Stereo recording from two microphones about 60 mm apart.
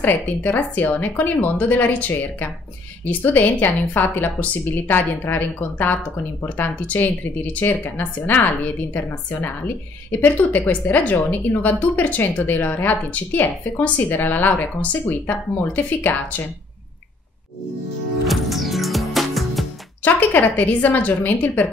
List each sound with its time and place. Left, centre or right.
0.0 s a woman's voice: left
18.2 s music: centre
20.0 s a woman's voice: left